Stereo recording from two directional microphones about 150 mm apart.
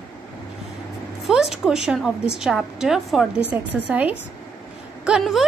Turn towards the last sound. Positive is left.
turn(degrees=-5)  # may be behind; listen again after turning